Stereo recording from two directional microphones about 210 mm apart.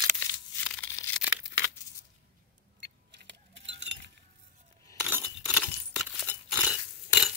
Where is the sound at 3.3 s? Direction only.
60° right (ahead or behind).